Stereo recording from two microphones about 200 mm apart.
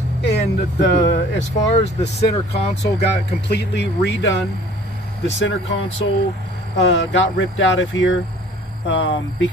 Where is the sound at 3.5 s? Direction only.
60° left (ahead or behind).